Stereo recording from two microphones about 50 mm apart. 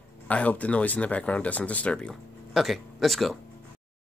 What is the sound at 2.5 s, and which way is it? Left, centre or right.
Speech, centre.